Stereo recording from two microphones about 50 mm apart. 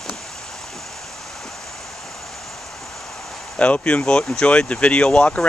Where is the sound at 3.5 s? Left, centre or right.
Left.